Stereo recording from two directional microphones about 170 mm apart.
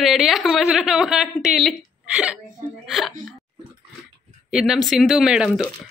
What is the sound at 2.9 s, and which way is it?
Speech, centre (ahead or behind).